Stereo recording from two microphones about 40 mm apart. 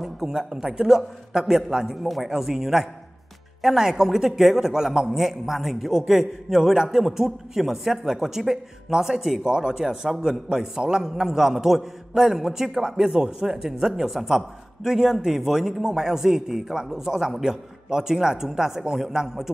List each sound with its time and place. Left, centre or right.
0.0 s a man's voice: centre
2.0 s a man's voice: centre
9.4 s a man's voice: centre